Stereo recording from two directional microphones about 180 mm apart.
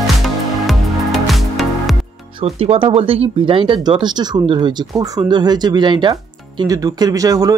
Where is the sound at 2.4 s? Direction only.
35° right (ahead or behind).